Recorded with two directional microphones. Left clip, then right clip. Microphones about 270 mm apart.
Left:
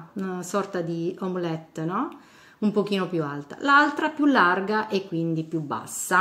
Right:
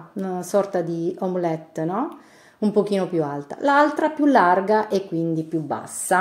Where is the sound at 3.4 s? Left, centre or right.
Centre.